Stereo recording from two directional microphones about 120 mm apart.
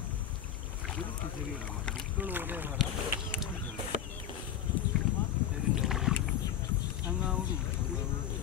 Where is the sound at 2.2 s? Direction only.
15° right (ahead or behind).